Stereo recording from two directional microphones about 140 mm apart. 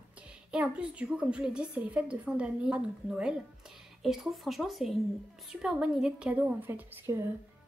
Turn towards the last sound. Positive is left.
turn(degrees=-20)  # may be behind; listen again after turning